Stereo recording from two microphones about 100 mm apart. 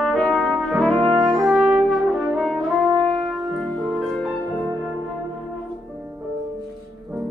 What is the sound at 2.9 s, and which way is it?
Brass instrument, 50° right (ahead or behind).